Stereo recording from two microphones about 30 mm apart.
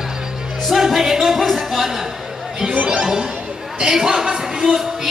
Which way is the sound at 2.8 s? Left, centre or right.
Right.